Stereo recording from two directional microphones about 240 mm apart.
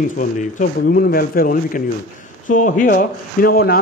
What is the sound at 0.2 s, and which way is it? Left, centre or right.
Speech, left.